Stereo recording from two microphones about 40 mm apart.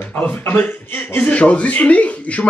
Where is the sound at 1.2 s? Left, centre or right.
Left.